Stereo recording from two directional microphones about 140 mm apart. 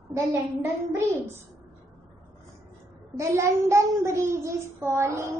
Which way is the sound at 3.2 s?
20° right (ahead or behind).